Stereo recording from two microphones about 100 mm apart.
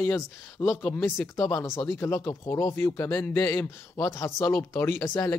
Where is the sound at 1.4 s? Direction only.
30° left (ahead or behind).